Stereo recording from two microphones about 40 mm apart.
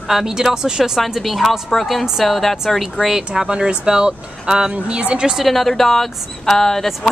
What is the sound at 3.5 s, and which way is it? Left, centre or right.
Speech, right.